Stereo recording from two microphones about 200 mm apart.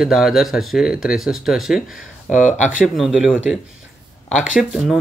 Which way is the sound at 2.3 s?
40° left (ahead or behind).